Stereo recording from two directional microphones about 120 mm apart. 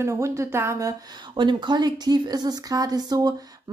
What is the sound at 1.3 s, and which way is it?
Speech, 40° right (ahead or behind).